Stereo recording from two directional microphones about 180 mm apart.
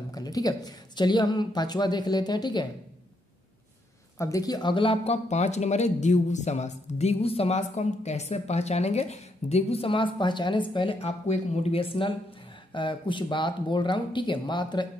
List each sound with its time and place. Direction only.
0.1 s a woman's voice: 20° left (ahead or behind)
4.2 s a woman's voice: 20° left (ahead or behind)